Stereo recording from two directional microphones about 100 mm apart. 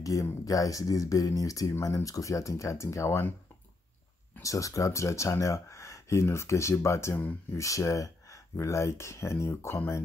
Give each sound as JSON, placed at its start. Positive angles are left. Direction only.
{"t": 0.0, "sound": "speech", "side_deg": 35}
{"t": 4.4, "sound": "speech", "side_deg": 35}